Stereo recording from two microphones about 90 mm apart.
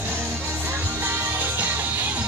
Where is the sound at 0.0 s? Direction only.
25° right (ahead or behind).